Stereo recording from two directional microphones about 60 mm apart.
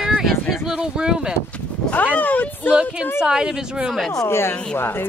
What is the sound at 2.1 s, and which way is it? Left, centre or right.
Speech, left.